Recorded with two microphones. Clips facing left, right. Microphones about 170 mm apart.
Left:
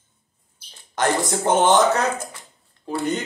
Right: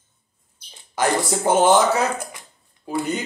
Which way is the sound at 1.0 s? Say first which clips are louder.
Even; 10° right (ahead or behind).